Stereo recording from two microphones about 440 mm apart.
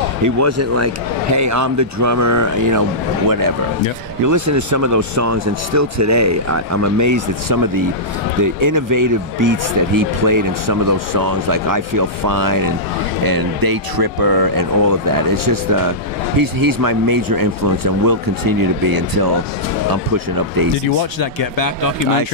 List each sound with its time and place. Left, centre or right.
0.2 s speech: right
4.3 s speech: right
20.3 s speech: right
21.2 s speech: left